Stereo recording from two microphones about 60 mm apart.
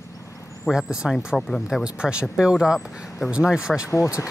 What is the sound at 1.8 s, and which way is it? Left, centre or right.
Speech, centre.